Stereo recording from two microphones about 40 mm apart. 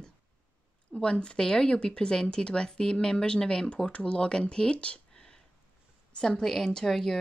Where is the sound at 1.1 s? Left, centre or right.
Left.